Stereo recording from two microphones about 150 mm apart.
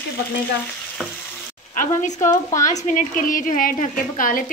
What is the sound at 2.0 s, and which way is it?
A woman's voice, 55° left (ahead or behind).